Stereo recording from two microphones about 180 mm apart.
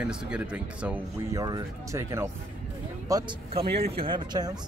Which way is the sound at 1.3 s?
20° right (ahead or behind).